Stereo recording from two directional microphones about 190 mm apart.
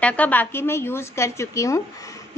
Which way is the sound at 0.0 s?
5° left (ahead or behind).